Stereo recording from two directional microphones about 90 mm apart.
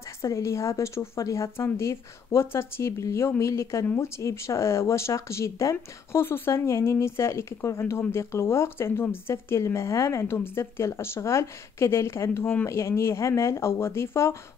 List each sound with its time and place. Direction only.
0.2 s speech: 35° left (ahead or behind)
3.8 s speech: 20° left (ahead or behind)
4.2 s speech: 35° left (ahead or behind)